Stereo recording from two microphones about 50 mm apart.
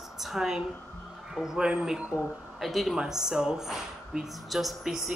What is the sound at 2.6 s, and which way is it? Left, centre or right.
A woman's voice, centre.